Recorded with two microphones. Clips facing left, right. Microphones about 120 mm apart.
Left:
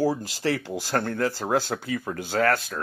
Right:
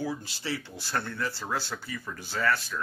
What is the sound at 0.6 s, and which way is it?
Speech, 90° left.